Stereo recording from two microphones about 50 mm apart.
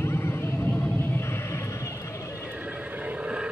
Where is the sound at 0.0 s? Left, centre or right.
Left.